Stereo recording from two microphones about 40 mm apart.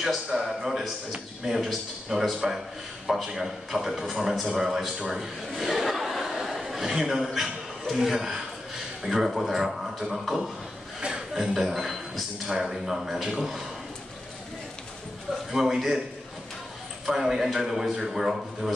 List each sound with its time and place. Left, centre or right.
0.0 s a man's voice: centre
5.1 s chuckle: centre
7.3 s a man's voice: centre
11.0 s chuckle: right
11.4 s a man's voice: centre
15.5 s a man's voice: centre
17.0 s a man's voice: centre